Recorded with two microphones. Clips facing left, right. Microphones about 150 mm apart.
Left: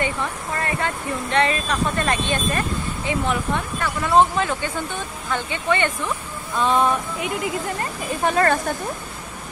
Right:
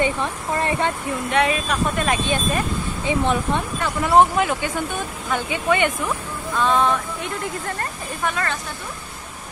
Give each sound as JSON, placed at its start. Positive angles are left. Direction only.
{"t": 0.0, "sound": "speech", "side_deg": -20}
{"t": 1.4, "sound": "speech", "side_deg": -10}
{"t": 6.6, "sound": "music", "side_deg": 10}
{"t": 8.3, "sound": "speech", "side_deg": 45}